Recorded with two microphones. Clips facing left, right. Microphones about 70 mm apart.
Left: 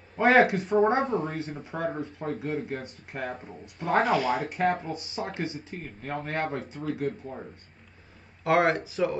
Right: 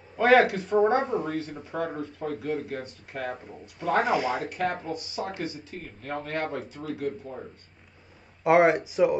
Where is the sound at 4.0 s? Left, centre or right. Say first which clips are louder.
Left 1 dB; centre.